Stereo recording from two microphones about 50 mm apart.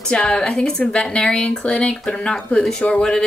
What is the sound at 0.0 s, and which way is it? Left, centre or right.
Speech, centre.